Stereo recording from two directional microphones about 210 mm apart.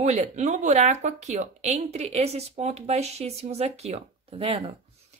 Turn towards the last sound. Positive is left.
turn(degrees=-25)  # may be behind; listen again after turning